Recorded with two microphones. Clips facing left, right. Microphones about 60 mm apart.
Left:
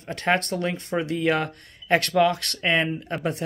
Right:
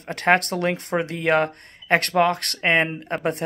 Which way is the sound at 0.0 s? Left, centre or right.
Right.